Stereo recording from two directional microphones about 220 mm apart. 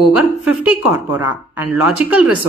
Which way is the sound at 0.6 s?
10° right (ahead or behind).